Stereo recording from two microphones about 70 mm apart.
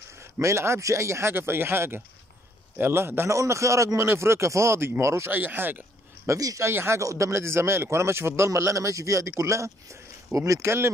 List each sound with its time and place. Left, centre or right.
0.2 s a man's voice: right
5.3 s speech: right
6.2 s speech: right
6.7 s a man's voice: right
7.0 s a man's voice: right